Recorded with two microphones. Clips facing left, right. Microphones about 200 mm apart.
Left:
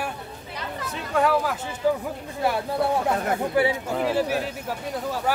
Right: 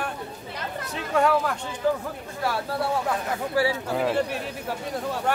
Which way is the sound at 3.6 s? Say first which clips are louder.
Left 2 dB; 20° left (ahead or behind).